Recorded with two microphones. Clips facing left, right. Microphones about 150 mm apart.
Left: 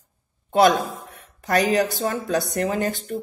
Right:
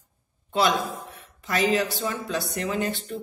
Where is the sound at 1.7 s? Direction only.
45° left (ahead or behind).